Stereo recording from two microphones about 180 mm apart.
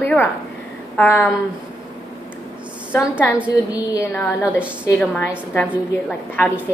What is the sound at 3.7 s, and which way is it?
Speech, 15° left (ahead or behind).